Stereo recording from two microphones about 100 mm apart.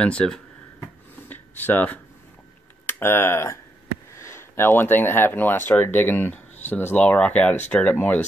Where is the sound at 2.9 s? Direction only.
25° left (ahead or behind).